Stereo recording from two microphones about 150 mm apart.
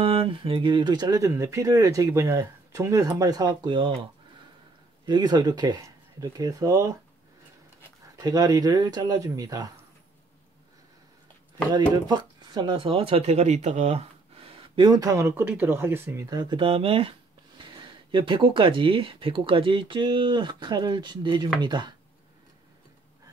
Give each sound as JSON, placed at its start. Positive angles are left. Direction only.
{"t": 0.0, "sound": "speech", "side_deg": -35}
{"t": 5.0, "sound": "speech", "side_deg": -30}
{"t": 8.2, "sound": "speech", "side_deg": -25}
{"t": 12.1, "sound": "speech", "side_deg": -30}
{"t": 14.8, "sound": "speech", "side_deg": -25}